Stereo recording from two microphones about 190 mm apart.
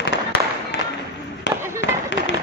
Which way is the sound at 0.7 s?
70° left (ahead or behind).